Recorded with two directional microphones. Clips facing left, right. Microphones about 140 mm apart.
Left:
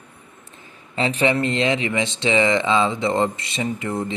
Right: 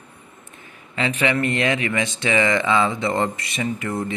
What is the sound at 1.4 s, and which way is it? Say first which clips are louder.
Speech: left 1 dB; 20° left (ahead or behind).